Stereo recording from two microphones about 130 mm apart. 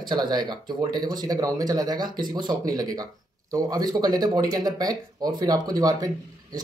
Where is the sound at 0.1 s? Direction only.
35° right (ahead or behind).